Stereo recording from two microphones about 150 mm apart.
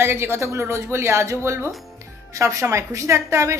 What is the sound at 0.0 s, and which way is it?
A woman's voice, 15° right (ahead or behind).